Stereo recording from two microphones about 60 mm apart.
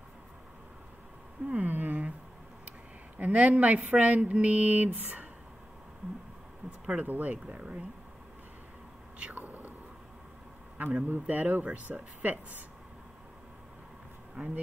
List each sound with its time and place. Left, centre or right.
1.5 s a sound: right
3.2 s speech: right
7.0 s speech: right
9.2 s a sound: right
10.8 s speech: right
14.3 s speech: right